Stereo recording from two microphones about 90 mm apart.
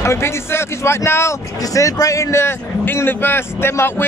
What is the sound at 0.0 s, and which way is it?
Speech, 30° left (ahead or behind).